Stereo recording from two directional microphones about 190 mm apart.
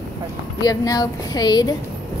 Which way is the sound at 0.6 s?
20° left (ahead or behind).